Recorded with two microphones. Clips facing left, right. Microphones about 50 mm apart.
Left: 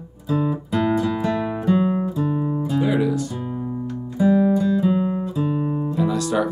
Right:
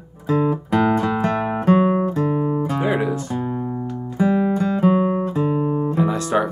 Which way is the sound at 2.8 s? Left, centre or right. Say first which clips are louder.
Even; right.